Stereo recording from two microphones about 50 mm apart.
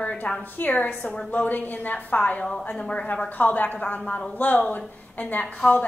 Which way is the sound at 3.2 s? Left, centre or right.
Left.